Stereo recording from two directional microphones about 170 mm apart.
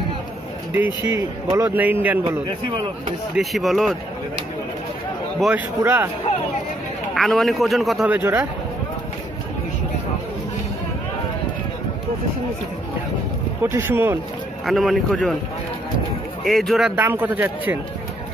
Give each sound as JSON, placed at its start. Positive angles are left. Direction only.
{"t": 0.7, "sound": "a man's voice", "side_deg": -10}
{"t": 2.2, "sound": "speech", "side_deg": -25}
{"t": 3.3, "sound": "a man's voice", "side_deg": 0}
{"t": 5.8, "sound": "a man's voice", "side_deg": -10}
{"t": 7.2, "sound": "a man's voice", "side_deg": 0}
{"t": 13.7, "sound": "a man's voice", "side_deg": -15}
{"t": 14.7, "sound": "a man's voice", "side_deg": 0}
{"t": 16.4, "sound": "a man's voice", "side_deg": 0}